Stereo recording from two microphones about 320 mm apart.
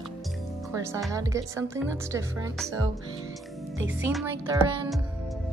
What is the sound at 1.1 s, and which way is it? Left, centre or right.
A woman's voice, centre.